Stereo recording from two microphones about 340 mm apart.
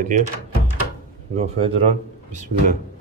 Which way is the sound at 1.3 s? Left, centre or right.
Centre.